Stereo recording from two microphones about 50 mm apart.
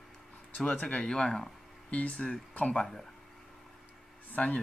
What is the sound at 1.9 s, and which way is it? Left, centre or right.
Speech, left.